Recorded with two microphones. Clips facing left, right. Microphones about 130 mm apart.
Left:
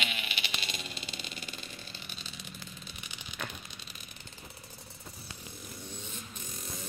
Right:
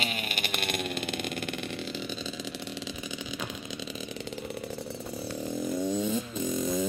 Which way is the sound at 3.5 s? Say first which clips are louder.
Right 11 dB; 90° right.